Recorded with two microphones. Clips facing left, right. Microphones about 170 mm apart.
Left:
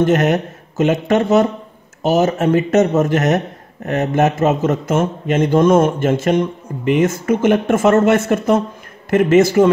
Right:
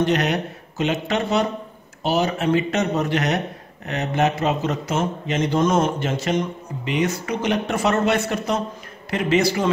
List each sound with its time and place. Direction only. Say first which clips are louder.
0.0 s speech: left 6 dB; 45° left (ahead or behind)